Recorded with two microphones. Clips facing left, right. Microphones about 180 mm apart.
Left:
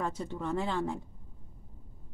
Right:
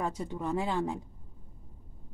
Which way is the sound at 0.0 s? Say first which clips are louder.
Right 1 dB; 15° right (ahead or behind).